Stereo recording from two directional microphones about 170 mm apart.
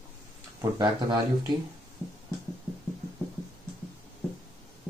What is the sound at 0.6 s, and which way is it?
Speech, 25° right (ahead or behind).